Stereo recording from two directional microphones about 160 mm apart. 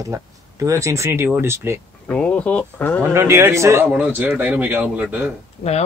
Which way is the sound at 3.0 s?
15° right (ahead or behind).